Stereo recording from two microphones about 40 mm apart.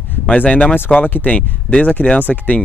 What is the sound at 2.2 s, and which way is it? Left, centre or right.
Speech, left.